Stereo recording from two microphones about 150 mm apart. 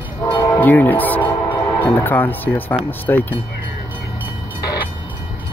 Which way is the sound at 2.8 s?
10° left (ahead or behind).